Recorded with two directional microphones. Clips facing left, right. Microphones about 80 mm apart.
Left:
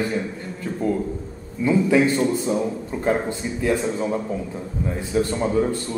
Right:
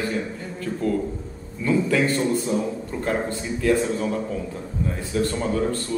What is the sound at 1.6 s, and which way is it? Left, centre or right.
Speech, centre.